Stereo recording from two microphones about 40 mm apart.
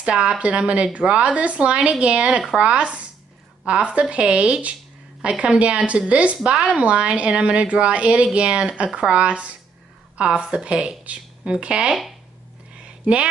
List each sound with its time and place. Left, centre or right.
0.0 s speech: right
0.4 s speech: right
6.4 s speech: right
12.7 s a sound: right